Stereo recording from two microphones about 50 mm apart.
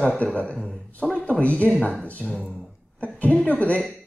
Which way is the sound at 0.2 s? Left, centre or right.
Left.